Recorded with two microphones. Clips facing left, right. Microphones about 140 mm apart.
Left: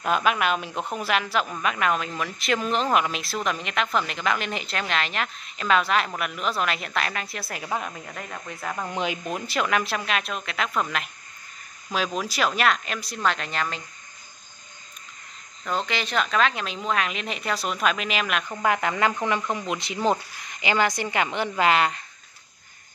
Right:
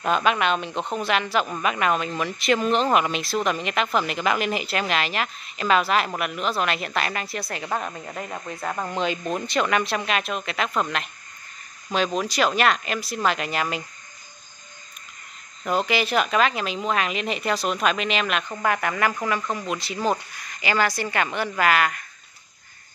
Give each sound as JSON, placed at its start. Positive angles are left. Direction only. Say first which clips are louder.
{"t": 0.0, "sound": "speech", "louder": "right 1 dB", "side_deg": 5}
{"t": 8.0, "sound": "speech", "louder": "right 4 dB", "side_deg": -15}
{"t": 8.9, "sound": "speech", "louder": "right 3 dB", "side_deg": 10}
{"t": 15.6, "sound": "speech", "louder": "right 5 dB", "side_deg": -10}
{"t": 18.6, "sound": "speech", "louder": "left 1 dB", "side_deg": 20}